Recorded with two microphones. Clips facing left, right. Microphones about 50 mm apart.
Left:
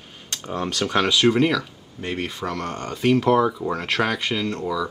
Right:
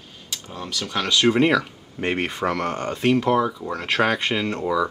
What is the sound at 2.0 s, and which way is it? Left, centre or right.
Speech, right.